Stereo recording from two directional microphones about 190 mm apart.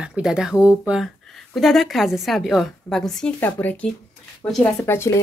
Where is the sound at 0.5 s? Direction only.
15° left (ahead or behind).